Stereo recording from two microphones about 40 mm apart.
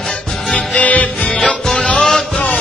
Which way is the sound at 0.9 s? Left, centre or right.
Left.